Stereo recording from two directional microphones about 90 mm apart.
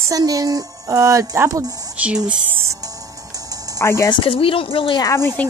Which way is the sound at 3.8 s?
30° left (ahead or behind).